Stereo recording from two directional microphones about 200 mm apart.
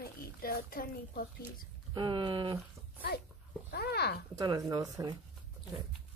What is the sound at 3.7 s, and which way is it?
Speech, 55° left (ahead or behind).